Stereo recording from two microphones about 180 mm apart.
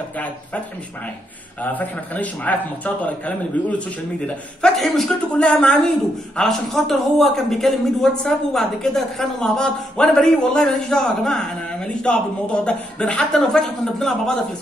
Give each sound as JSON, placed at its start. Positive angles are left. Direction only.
{"t": 1.6, "sound": "a man's voice", "side_deg": 10}